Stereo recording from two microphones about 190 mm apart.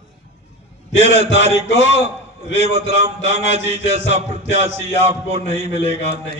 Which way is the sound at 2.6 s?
35° right (ahead or behind).